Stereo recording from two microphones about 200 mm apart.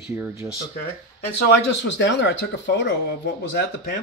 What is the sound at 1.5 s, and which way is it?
Speech, 65° left (ahead or behind).